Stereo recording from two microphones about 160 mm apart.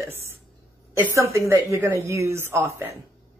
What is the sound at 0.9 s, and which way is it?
Speech, 15° right (ahead or behind).